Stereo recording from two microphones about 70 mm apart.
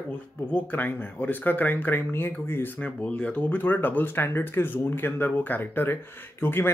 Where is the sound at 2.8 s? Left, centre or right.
Left.